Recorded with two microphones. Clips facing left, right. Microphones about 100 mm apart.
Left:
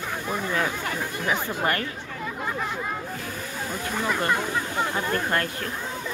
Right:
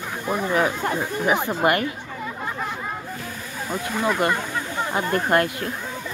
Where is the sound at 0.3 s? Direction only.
20° right (ahead or behind).